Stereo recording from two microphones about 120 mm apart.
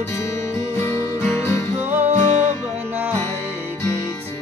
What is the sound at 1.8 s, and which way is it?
Music, 15° right (ahead or behind).